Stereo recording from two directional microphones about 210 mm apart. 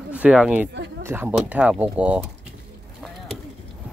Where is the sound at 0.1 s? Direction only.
5° right (ahead or behind).